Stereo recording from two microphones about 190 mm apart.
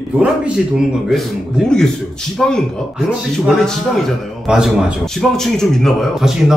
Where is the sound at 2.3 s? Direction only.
5° left (ahead or behind).